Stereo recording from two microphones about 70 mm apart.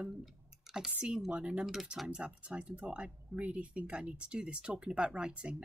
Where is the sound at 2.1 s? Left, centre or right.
Centre.